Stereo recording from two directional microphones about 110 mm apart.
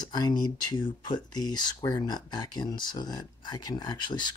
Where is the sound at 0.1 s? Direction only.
40° left (ahead or behind).